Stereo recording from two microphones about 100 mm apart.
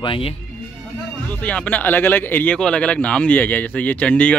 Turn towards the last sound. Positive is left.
turn(degrees=15)  # may be behind; listen again after turning